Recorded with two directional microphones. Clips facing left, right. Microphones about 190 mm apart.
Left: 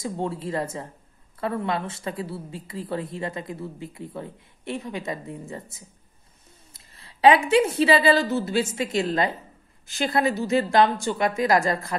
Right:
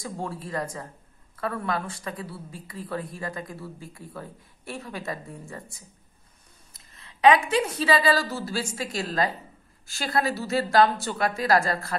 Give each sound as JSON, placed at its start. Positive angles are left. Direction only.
{"t": 0.0, "sound": "speech", "side_deg": 25}
{"t": 6.7, "sound": "a woman's voice", "side_deg": 30}